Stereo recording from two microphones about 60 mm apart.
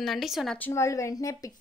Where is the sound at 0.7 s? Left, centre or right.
Left.